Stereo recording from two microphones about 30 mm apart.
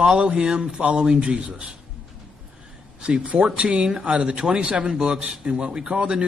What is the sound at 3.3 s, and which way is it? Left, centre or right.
Speech, right.